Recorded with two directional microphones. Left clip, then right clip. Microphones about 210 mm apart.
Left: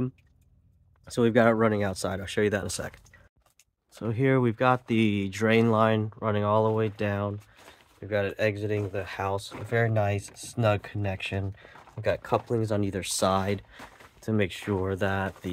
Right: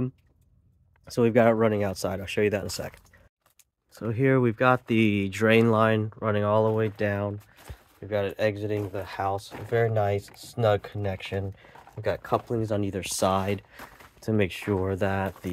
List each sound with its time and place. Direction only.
1.0 s speech: centre (ahead or behind)
14.2 s speech: 10° right (ahead or behind)